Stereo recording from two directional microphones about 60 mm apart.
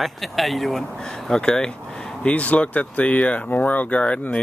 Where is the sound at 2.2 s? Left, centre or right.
Left.